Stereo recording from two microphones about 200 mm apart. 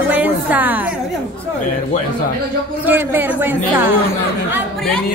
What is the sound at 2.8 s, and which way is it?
Speech, 10° right (ahead or behind).